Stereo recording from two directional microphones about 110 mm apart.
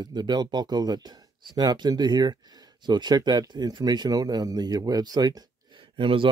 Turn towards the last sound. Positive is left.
turn(degrees=-55)  # may be behind; listen again after turning